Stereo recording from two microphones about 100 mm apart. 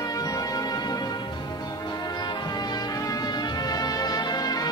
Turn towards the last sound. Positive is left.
turn(degrees=40)  # may be behind; listen again after turning